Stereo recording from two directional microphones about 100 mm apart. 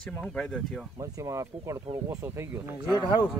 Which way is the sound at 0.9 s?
35° right (ahead or behind).